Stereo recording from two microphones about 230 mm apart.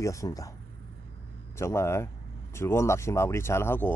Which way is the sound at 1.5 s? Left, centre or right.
Centre.